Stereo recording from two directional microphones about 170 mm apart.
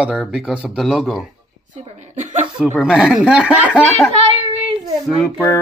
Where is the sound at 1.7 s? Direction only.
45° right (ahead or behind).